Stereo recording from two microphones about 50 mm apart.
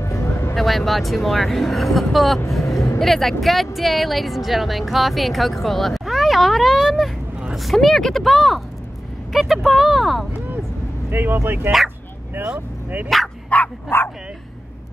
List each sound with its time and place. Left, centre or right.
0.0 s vehicle: left
0.6 s speech: centre
2.6 s speech: left
3.0 s speech: centre
11.1 s speech: right
13.5 s bow-wow: left
13.8 s speech: left